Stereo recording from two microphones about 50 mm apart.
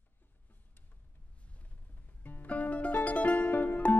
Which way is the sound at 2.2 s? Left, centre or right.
Left.